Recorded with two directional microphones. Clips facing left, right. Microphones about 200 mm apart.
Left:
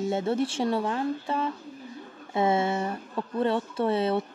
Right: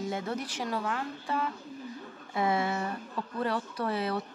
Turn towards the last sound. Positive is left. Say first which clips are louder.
# left 6 dB
turn(degrees=25)  # may be behind; listen again after turning